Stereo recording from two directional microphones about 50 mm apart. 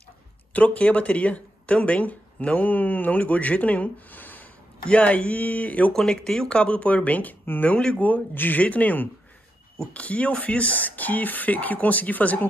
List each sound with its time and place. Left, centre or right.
0.5 s speech: left
4.8 s speech: left
5.9 s speech: centre; by 7.7 s left
7.7 s speech: left